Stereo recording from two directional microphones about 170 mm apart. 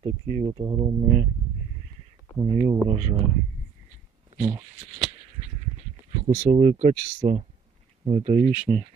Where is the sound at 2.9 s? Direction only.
40° right (ahead or behind).